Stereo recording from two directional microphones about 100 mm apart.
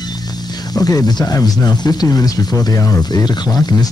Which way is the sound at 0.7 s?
40° left (ahead or behind).